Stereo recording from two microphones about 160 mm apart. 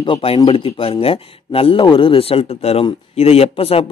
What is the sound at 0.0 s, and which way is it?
Speech, 35° left (ahead or behind).